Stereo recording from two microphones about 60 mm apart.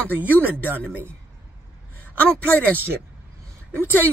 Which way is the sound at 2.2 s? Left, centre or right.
Left.